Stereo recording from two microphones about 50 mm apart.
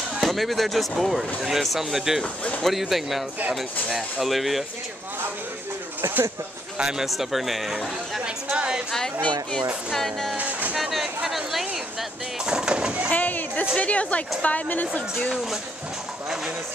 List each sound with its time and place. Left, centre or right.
0.2 s speech: centre
2.2 s speech: left
2.6 s speech: centre
6.8 s speech: centre
7.1 s speech: centre
8.5 s a sound: centre
9.9 s speech: centre
10.3 s music: right
10.8 s a sound: centre
12.4 s a sound: centre
13.1 s a sound: left
13.7 s a woman's voice: left